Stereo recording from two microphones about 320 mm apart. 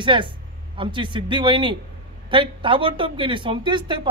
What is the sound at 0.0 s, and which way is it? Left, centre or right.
Speech, centre.